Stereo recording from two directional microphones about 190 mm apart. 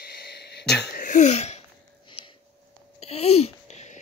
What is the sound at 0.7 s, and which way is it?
Sneeze, 60° left (ahead or behind).